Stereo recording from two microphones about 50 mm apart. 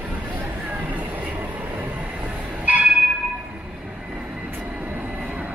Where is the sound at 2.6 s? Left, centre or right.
Right.